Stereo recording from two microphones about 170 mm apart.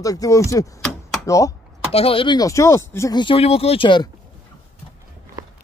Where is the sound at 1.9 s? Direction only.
35° left (ahead or behind).